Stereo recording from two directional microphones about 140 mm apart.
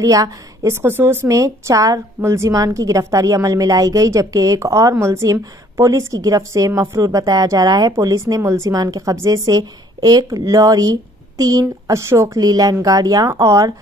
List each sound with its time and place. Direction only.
0.0 s a woman's voice: 25° right (ahead or behind)